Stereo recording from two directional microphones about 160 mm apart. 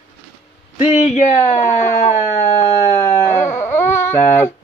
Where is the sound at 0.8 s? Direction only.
45° left (ahead or behind).